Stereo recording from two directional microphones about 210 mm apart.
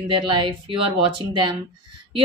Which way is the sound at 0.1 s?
25° right (ahead or behind).